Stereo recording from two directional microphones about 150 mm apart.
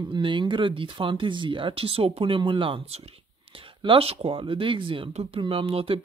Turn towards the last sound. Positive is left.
turn(degrees=-40)  # may be behind; listen again after turning